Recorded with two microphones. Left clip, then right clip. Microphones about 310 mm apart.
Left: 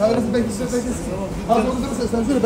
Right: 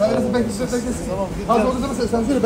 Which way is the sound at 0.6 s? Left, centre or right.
Centre.